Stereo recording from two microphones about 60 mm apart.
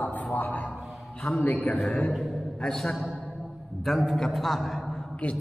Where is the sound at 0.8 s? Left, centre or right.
Centre.